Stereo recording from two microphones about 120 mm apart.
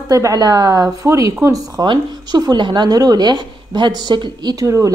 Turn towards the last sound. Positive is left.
turn(degrees=-25)  # may be behind; listen again after turning